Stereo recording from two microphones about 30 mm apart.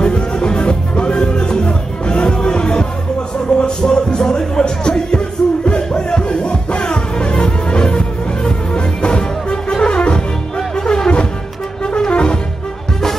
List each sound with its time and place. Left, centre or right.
0.0 s music: left
12.1 s music: left